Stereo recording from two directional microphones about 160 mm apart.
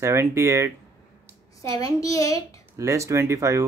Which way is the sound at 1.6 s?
20° left (ahead or behind).